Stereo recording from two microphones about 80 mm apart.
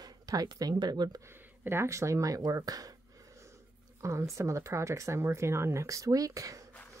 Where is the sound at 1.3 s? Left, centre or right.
Right.